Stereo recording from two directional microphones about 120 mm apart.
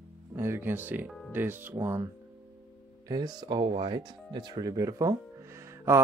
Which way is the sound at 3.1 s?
35° right (ahead or behind).